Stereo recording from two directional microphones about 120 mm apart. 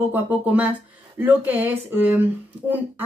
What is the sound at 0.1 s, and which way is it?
Speech, 15° right (ahead or behind).